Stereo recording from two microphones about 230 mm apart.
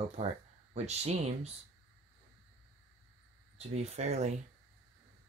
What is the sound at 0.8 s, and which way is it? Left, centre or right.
Speech, right.